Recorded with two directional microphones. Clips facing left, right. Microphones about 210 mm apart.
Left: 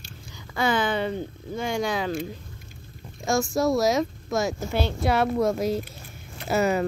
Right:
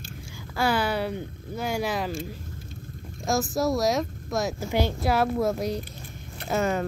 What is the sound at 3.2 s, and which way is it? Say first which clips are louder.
Speech: left 2 dB; centre (ahead or behind).